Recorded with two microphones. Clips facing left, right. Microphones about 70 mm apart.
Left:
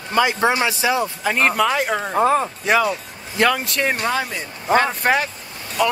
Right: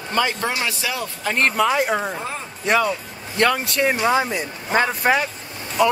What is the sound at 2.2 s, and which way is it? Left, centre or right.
Speech, left.